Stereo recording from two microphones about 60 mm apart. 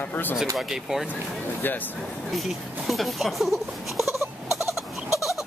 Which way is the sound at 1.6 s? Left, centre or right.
Left.